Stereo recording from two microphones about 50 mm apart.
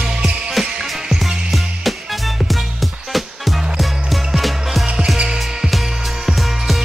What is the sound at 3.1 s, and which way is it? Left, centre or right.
Music, centre.